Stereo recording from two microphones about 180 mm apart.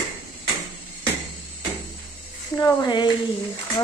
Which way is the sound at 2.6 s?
20° left (ahead or behind).